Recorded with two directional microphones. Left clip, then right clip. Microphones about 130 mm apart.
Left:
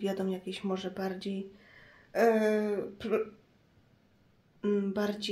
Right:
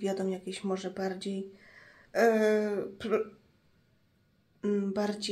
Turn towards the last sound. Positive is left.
turn(degrees=10)  # may be behind; listen again after turning